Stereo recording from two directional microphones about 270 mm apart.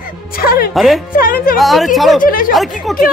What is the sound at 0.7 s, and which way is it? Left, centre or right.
Speech, centre.